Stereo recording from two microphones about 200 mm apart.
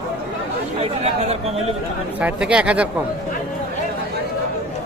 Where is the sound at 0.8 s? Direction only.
30° right (ahead or behind).